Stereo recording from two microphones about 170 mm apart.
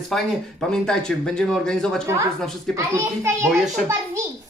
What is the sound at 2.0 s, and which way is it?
A child's voice, 15° right (ahead or behind).